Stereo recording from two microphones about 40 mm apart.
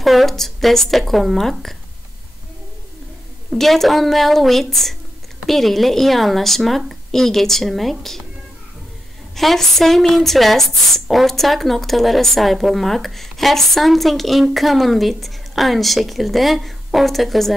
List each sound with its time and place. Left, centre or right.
0.0 s a woman's voice: centre
3.5 s a woman's voice: centre
9.3 s a woman's voice: centre